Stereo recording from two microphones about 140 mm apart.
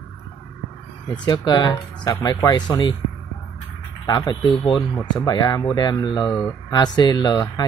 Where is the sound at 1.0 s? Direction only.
30° left (ahead or behind).